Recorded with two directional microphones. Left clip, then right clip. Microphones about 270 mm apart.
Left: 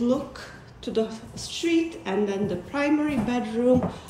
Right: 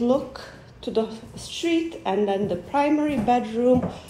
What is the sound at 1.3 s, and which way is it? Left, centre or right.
A woman's voice, centre.